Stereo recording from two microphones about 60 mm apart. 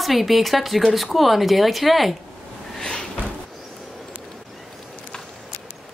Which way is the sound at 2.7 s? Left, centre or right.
Centre.